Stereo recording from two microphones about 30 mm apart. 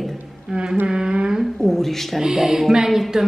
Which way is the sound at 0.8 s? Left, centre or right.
Right.